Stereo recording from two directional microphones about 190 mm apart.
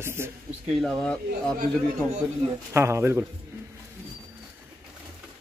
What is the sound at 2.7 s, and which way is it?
Speech, 15° right (ahead or behind).